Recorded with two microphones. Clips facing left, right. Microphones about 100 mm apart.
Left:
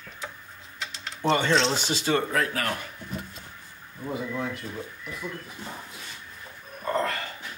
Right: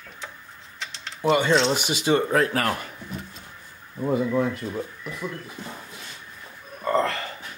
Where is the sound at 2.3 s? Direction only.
35° right (ahead or behind).